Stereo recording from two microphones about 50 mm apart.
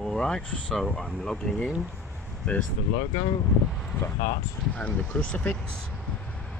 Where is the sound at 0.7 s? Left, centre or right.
Centre.